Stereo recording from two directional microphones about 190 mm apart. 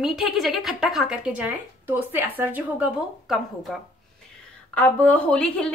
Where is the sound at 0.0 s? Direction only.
Centre (ahead or behind).